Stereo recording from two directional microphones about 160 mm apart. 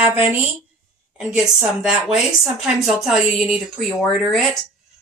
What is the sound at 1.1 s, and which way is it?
A woman's voice, 5° right (ahead or behind).